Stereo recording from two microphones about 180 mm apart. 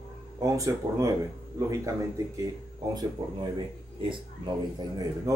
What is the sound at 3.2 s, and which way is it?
Speech, 20° right (ahead or behind).